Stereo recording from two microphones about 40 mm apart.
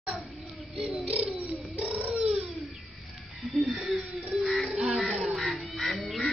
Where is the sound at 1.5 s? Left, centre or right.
Right.